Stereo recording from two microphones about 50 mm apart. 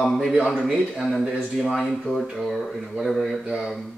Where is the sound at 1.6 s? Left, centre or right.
Centre.